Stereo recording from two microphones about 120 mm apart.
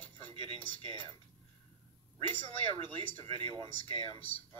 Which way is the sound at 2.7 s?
45° right (ahead or behind).